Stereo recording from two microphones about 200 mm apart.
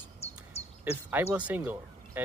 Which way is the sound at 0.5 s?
30° left (ahead or behind).